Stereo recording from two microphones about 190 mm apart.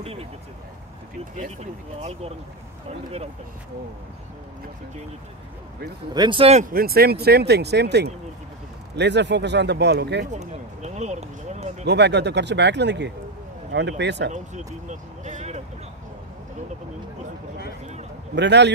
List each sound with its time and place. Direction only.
0.0 s vehicle: 30° right (ahead or behind)
1.3 s speech: 35° right (ahead or behind)
6.1 s speech: 25° right (ahead or behind)
6.6 s speech: 50° right (ahead or behind)
10.2 s speech: 40° right (ahead or behind)
11.8 s speech: 65° right (ahead or behind)
14.3 s speech: 40° right (ahead or behind)
18.3 s speech: 65° right (ahead or behind)